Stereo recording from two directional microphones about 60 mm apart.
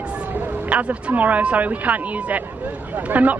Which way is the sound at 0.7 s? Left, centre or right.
Right.